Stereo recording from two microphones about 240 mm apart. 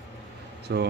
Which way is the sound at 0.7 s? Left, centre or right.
Right.